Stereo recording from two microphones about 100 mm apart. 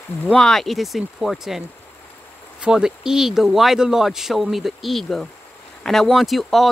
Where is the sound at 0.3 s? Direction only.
5° left (ahead or behind).